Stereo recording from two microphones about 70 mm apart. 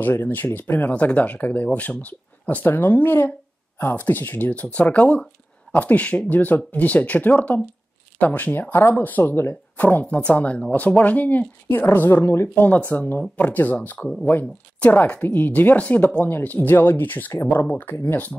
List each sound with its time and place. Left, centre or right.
0.0 s speech: left
9.8 s speech: left